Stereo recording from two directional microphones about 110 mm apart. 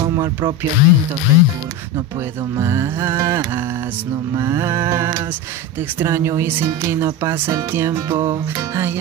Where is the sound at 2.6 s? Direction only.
25° right (ahead or behind).